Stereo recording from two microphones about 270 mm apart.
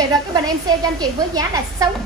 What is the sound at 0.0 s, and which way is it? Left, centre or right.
A woman's voice, centre.